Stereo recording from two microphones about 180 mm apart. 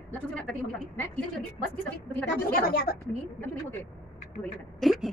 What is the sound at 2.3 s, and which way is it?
Speech, 55° left (ahead or behind).